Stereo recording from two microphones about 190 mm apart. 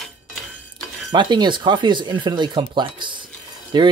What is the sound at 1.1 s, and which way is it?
Speech, 25° right (ahead or behind).